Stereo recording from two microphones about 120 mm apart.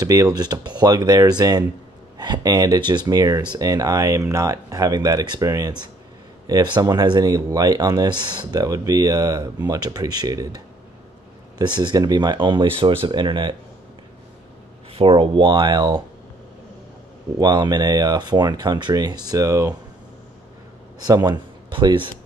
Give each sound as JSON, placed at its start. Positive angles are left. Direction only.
{"t": 0.0, "sound": "speech", "side_deg": -30}
{"t": 15.0, "sound": "speech", "side_deg": -45}
{"t": 17.4, "sound": "speech", "side_deg": -35}
{"t": 21.0, "sound": "speech", "side_deg": -35}